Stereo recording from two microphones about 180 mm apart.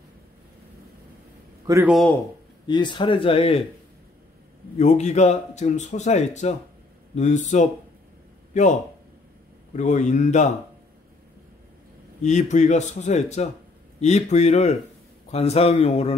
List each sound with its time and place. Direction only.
1.7 s a man's voice: 20° right (ahead or behind)
2.6 s speech: 25° left (ahead or behind)
4.7 s speech: 40° left (ahead or behind)
9.8 s speech: 40° left (ahead or behind)
12.2 s speech: 40° left (ahead or behind)